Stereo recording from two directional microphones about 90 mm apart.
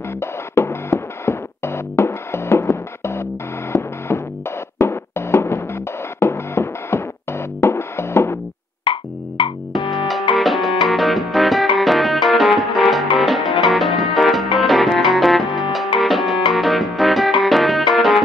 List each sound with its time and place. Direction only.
0.2 s music: 30° left (ahead or behind)
8.8 s music: 70° left (ahead or behind)
9.8 s music: centre (ahead or behind)